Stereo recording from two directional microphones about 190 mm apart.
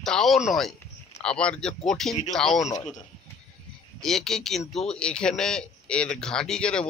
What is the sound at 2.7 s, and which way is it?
Speech, 35° left (ahead or behind).